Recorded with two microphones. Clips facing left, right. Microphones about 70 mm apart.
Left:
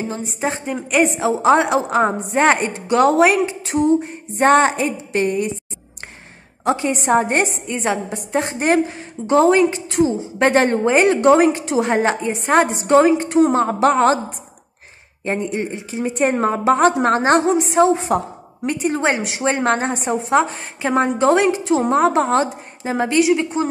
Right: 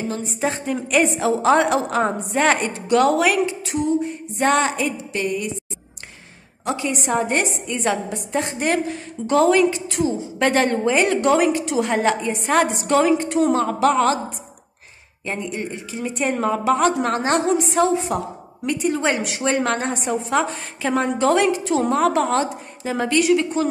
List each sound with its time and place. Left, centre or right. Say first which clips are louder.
0.2 s a woman's voice: left 1 dB; centre; by 5.5 s left
6.6 s a woman's voice: left 5 dB; left
15.2 s a woman's voice: left 5 dB; left
17.9 s a woman's voice: left 2 dB; left; by 23.7 s centre